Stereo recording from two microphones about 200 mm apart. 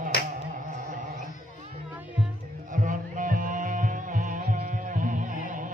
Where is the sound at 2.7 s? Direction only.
40° right (ahead or behind).